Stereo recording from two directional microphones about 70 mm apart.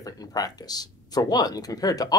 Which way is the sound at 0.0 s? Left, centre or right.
Left.